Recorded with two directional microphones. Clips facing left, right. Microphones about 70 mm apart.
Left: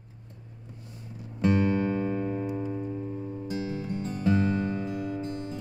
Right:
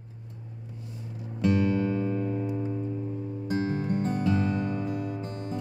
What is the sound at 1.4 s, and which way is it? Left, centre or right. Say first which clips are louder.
Music: even; left.